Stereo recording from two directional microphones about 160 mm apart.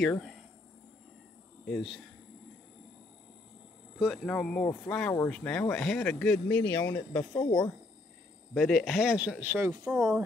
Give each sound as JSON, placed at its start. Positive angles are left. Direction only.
{"t": 0.0, "sound": "speech", "side_deg": 5}
{"t": 1.7, "sound": "speech", "side_deg": 0}
{"t": 4.0, "sound": "speech", "side_deg": 0}
{"t": 7.3, "sound": "speech", "side_deg": 25}
{"t": 8.5, "sound": "speech", "side_deg": 0}